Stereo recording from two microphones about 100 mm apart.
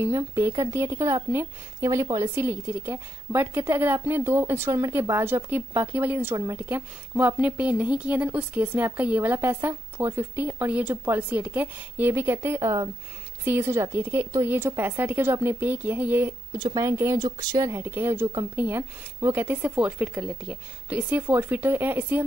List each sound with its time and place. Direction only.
0.0 s a woman's voice: 35° right (ahead or behind)
4.6 s a woman's voice: 35° right (ahead or behind)
5.2 s a woman's voice: 20° right (ahead or behind)
16.5 s speech: 50° right (ahead or behind)
16.8 s a woman's voice: 35° right (ahead or behind)